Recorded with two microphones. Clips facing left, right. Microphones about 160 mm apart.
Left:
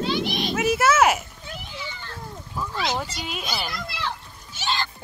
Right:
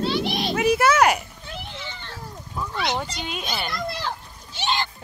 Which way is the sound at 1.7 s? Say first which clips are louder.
Even; 60° right (ahead or behind).